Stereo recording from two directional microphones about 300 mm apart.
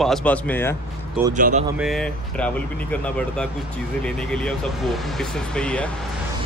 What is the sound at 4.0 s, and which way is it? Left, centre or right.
Speech, centre.